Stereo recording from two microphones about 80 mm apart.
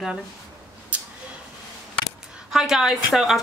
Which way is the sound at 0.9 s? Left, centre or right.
Centre.